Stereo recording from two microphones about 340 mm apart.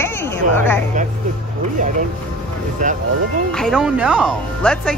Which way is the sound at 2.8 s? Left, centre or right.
Right.